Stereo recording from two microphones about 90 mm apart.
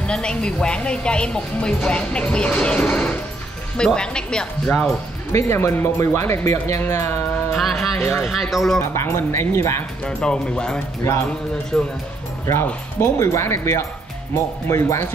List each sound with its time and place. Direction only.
0.0 s speech: 10° left (ahead or behind)
5.3 s speech: 30° left (ahead or behind)
7.5 s music: centre (ahead or behind)
8.2 s speech: centre (ahead or behind)
8.9 s speech: 30° left (ahead or behind)
10.0 s speech: 10° left (ahead or behind)
13.0 s speech: 30° left (ahead or behind)